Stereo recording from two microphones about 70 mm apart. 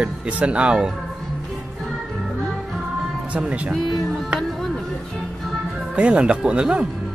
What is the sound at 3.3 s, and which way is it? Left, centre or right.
Speech, centre.